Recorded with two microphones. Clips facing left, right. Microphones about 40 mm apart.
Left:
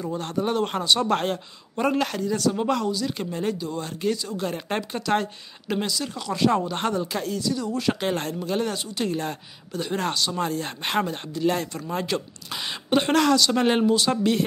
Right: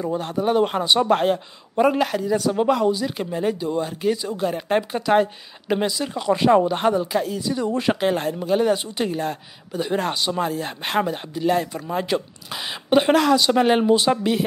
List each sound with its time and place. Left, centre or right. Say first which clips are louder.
0.2 s speech: right 4 dB; centre
4.4 s speech: right 6 dB; centre
6.8 s speech: right 6 dB; centre
7.4 s speech: right 3 dB; right
8.0 s speech: right 5 dB; centre
9.1 s speech: right 3 dB; centre
9.7 s speech: right 3 dB; centre
10.4 s speech: right 2 dB; centre
13.8 s speech: right 3 dB; centre